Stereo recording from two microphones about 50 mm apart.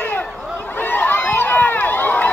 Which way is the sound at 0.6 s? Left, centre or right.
Left.